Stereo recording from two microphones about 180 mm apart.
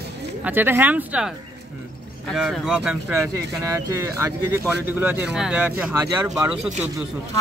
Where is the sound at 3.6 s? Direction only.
15° right (ahead or behind).